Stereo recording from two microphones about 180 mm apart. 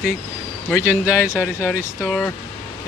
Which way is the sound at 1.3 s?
10° left (ahead or behind).